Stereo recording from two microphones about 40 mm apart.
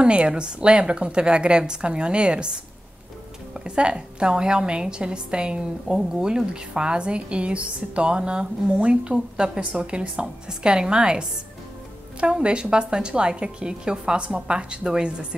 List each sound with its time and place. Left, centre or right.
0.0 s a woman's voice: right